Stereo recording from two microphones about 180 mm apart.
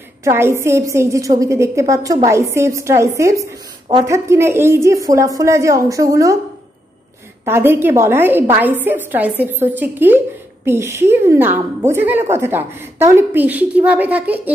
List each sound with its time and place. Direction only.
0.2 s a woman's voice: 15° right (ahead or behind)
7.4 s a woman's voice: 15° right (ahead or behind)